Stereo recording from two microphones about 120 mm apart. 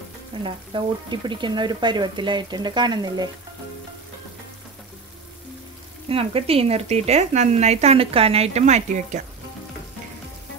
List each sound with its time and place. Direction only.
0.4 s speech: 40° right (ahead or behind)
6.0 s speech: 55° right (ahead or behind); by 9.2 s 90° right